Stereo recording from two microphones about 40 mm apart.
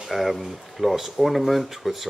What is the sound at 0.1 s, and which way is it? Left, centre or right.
Speech, centre.